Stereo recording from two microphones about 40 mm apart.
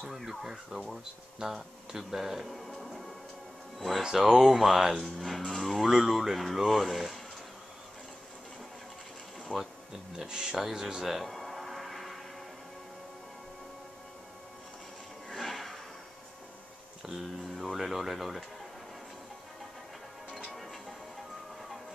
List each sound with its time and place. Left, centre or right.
0.1 s speech: centre
4.0 s speech: centre
5.8 s speech: centre
9.5 s speech: centre
10.1 s speech: centre
11.1 s music: centre
15.2 s a sound: centre
17.0 s speech: centre